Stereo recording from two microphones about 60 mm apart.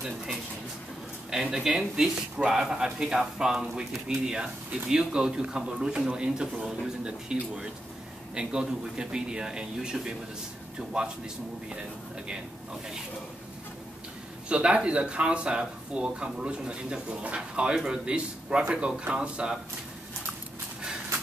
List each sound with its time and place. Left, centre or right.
1.3 s speech: centre
14.5 s speech: centre